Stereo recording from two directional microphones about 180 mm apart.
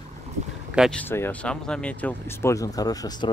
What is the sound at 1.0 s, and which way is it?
Speech, 10° left (ahead or behind).